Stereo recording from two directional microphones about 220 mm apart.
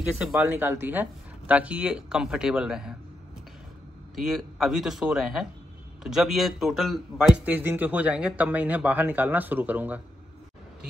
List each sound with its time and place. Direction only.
0.2 s a man's voice: 5° right (ahead or behind)
4.1 s a man's voice: centre (ahead or behind)